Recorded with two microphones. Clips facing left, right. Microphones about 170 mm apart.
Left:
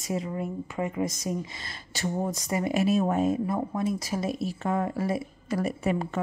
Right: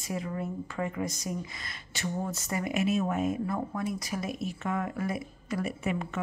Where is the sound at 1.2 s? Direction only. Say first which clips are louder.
Left 4 dB; 30° left (ahead or behind).